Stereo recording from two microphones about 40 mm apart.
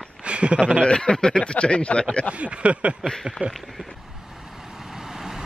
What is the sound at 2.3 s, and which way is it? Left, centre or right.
Speech, right.